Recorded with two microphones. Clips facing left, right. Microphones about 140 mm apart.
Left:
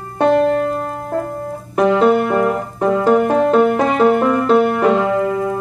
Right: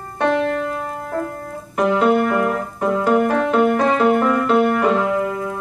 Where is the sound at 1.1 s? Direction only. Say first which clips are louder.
Left 4 dB; 30° left (ahead or behind).